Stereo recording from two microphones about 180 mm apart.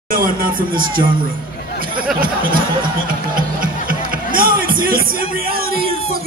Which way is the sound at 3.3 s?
50° right (ahead or behind).